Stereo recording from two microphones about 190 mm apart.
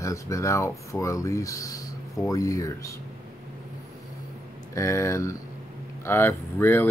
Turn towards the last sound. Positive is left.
turn(degrees=10)  # may be behind; listen again after turning